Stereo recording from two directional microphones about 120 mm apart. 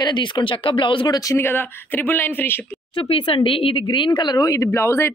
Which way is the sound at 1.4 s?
15° left (ahead or behind).